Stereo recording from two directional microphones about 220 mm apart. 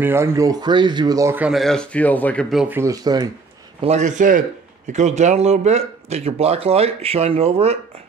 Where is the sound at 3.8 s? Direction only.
35° right (ahead or behind).